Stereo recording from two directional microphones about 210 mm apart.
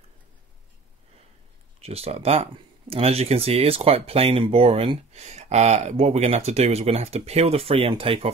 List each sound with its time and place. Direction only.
1.8 s speech: 30° right (ahead or behind)